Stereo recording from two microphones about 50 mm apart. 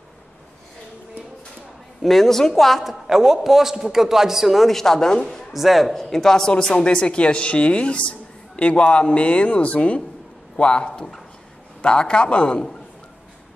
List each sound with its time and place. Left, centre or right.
2.0 s a man's voice: centre
5.5 s a man's voice: centre; by 12.6 s left